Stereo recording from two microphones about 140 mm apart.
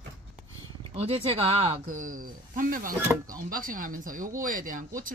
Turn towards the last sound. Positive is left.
turn(degrees=-70)  # may be behind; listen again after turning